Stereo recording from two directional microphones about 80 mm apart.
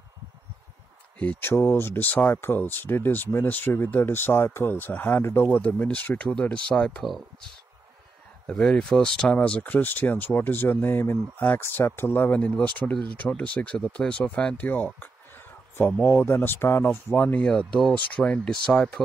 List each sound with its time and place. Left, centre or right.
1.2 s speech: left
8.5 s speech: centre
17.4 s speech: centre